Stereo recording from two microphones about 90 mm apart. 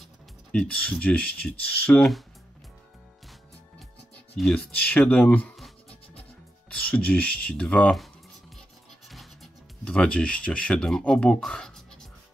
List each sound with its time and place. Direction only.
0.5 s speech: 10° left (ahead or behind)
2.0 s speech: centre (ahead or behind)
4.4 s speech: centre (ahead or behind)
4.7 s speech: 15° left (ahead or behind)
6.7 s speech: 10° left (ahead or behind)
9.1 s music: centre (ahead or behind)
9.8 s speech: 10° left (ahead or behind)